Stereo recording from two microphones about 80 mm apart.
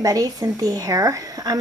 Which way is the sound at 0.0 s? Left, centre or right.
Right.